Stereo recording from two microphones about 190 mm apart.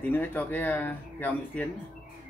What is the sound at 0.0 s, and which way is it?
Speech, 10° left (ahead or behind).